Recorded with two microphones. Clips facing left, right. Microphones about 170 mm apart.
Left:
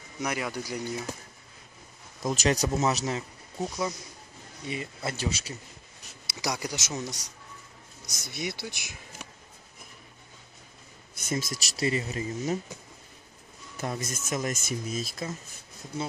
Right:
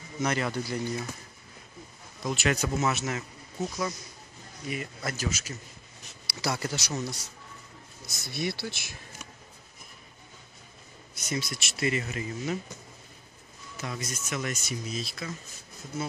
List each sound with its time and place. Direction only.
0.2 s speech: 10° left (ahead or behind)
2.2 s speech: 35° left (ahead or behind)
3.5 s speech: 15° left (ahead or behind)
4.6 s speech: 25° left (ahead or behind)
6.2 s speech: 15° left (ahead or behind)
11.2 s speech: 45° left (ahead or behind)
14.0 s speech: 45° left (ahead or behind)